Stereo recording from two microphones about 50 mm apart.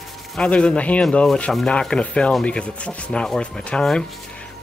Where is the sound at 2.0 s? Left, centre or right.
Left.